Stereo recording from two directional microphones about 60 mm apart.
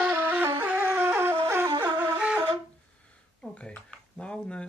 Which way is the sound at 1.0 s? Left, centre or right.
Right.